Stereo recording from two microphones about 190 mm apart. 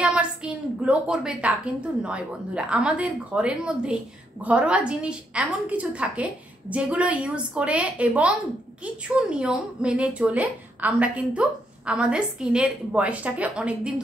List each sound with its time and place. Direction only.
0.0 s a woman's voice: 5° right (ahead or behind)